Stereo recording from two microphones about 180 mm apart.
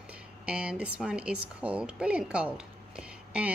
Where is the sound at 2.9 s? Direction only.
5° right (ahead or behind).